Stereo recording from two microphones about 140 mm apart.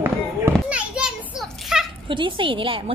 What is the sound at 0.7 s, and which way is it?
Children playing, 10° right (ahead or behind).